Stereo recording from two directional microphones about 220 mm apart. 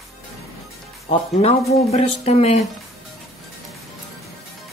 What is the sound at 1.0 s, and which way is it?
Speech, 30° left (ahead or behind).